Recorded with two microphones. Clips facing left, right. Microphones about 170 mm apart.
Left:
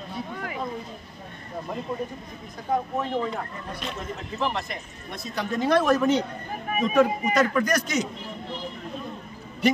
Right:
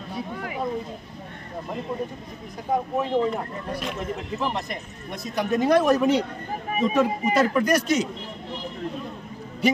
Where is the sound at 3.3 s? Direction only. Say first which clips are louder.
Right 4 dB; 5° right (ahead or behind).